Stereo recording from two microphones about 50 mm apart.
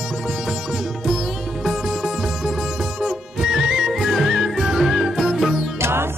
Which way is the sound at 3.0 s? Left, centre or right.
Centre.